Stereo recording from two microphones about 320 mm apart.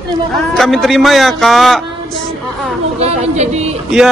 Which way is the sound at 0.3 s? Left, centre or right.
Centre.